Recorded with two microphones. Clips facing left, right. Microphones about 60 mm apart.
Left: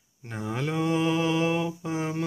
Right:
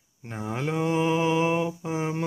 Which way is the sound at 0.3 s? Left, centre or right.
Centre.